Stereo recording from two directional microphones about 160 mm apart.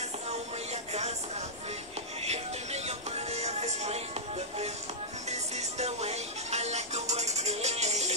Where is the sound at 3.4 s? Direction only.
45° right (ahead or behind).